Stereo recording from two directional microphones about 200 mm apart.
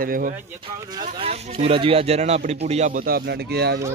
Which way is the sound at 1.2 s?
30° right (ahead or behind).